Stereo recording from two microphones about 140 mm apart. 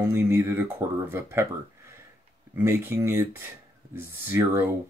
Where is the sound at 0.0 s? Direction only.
20° right (ahead or behind).